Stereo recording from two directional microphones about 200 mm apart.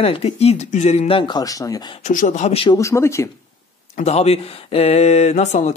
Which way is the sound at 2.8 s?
15° left (ahead or behind).